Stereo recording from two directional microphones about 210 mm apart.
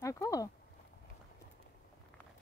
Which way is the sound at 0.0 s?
15° left (ahead or behind).